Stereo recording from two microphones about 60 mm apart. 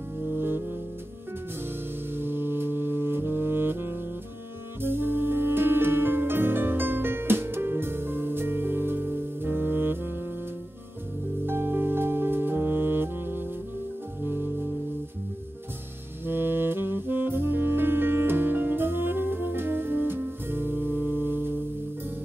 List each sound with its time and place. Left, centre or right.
0.3 s music: right
2.1 s music: right
11.4 s music: right
16.3 s saxophone: right